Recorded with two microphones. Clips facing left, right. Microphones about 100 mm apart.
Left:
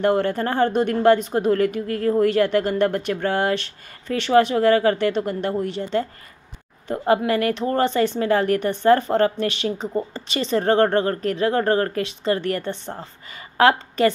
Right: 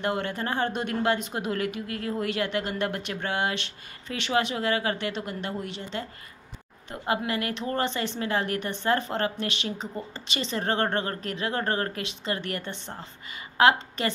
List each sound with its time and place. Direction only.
0.0 s speech: 40° left (ahead or behind)